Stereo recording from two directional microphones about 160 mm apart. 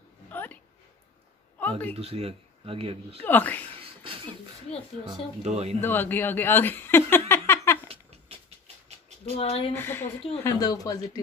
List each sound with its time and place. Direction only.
0.3 s a sound: 10° left (ahead or behind)
2.0 s speech: 40° right (ahead or behind)
3.3 s a woman's voice: 10° left (ahead or behind)
3.8 s a sound: 35° right (ahead or behind)
4.7 s speech: 5° left (ahead or behind)
5.4 s speech: 40° right (ahead or behind)
5.8 s speech: 15° left (ahead or behind)
7.9 s a sound: 40° right (ahead or behind)
9.4 s speech: 35° left (ahead or behind)
9.8 s a woman's voice: 15° left (ahead or behind)